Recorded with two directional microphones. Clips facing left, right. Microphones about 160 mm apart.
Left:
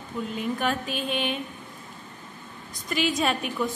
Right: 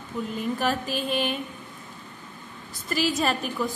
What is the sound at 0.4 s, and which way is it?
A woman's voice, centre (ahead or behind).